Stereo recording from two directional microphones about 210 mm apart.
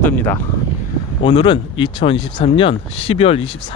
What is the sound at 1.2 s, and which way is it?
Speech, 25° left (ahead or behind).